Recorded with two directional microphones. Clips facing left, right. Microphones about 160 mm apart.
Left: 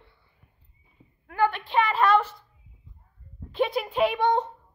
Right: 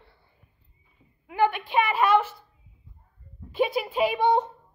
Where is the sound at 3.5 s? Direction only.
5° right (ahead or behind).